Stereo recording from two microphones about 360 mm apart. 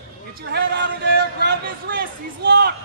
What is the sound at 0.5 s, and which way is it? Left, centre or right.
Speech, right.